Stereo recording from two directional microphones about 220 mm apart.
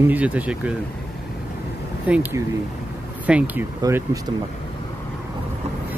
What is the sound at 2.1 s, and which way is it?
Speech, 10° right (ahead or behind).